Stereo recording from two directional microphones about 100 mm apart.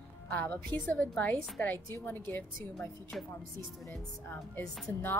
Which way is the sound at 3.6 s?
25° left (ahead or behind).